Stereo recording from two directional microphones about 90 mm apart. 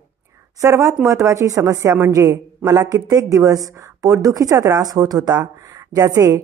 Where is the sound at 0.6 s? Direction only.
35° right (ahead or behind).